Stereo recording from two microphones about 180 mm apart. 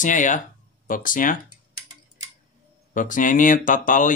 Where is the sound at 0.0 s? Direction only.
45° left (ahead or behind).